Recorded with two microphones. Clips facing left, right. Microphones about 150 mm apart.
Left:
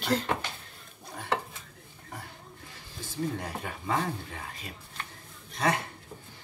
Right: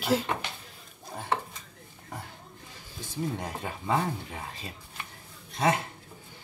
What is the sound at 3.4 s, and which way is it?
Speech, 20° right (ahead or behind).